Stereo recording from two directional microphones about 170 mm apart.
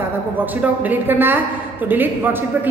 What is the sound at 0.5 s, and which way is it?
A woman's voice, 10° right (ahead or behind).